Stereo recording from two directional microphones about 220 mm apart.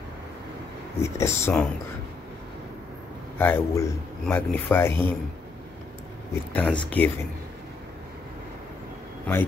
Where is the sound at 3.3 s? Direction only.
10° left (ahead or behind).